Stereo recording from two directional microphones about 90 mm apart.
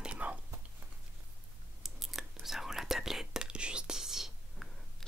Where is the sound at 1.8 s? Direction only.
Centre (ahead or behind).